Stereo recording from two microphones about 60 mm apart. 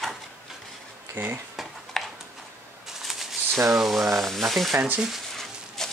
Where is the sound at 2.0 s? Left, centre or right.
Centre.